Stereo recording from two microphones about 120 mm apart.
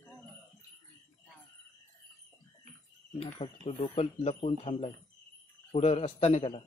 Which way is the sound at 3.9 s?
60° left (ahead or behind).